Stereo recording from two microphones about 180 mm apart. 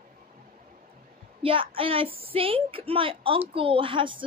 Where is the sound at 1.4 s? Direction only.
30° right (ahead or behind).